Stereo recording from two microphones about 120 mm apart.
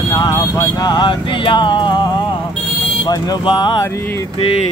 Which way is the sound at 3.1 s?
35° left (ahead or behind).